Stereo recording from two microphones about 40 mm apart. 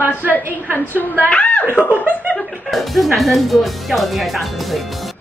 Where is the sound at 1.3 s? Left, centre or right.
Left.